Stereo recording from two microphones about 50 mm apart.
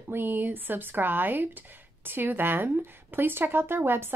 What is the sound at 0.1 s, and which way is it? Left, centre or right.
Speech, right.